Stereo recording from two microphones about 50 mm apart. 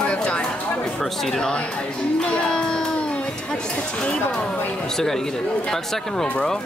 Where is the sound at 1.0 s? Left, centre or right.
Centre.